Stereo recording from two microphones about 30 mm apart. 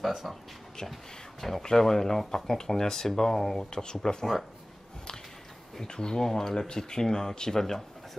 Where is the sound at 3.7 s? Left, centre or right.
Left.